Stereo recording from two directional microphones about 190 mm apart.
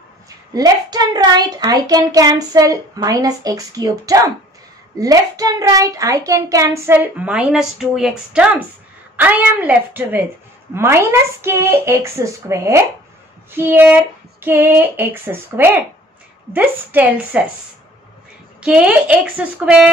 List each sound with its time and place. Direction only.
0.6 s a child's voice: 20° right (ahead or behind)
18.6 s a woman's voice: 5° right (ahead or behind)